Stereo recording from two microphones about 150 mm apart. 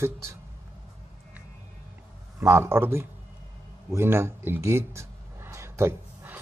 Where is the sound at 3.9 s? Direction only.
15° right (ahead or behind).